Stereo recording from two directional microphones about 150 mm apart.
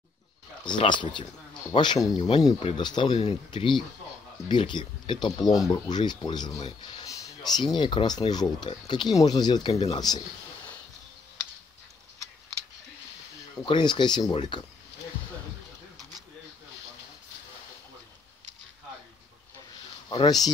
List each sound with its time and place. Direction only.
0.7 s speech: 30° left (ahead or behind)
9.7 s speech: 40° left (ahead or behind)
9.9 s speech: 25° left (ahead or behind)
13.7 s speech: 30° left (ahead or behind)
20.1 s speech: 30° left (ahead or behind)